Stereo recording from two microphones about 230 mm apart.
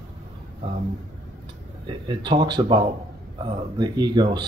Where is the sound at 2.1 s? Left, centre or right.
Centre.